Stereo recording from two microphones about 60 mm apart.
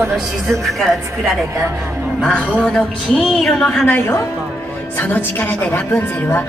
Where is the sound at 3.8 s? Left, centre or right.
Left.